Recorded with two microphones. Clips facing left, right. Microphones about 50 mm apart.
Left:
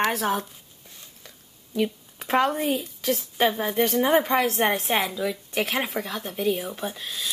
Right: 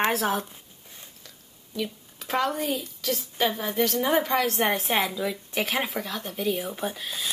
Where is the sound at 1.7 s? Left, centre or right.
Left.